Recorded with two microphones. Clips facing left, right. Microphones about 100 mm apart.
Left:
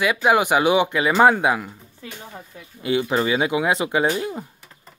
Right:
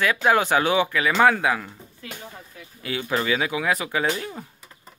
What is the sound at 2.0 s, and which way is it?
Speech, 25° left (ahead or behind).